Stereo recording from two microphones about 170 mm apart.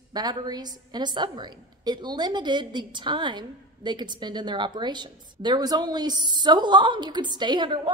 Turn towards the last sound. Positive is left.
turn(degrees=-25)  # may be behind; listen again after turning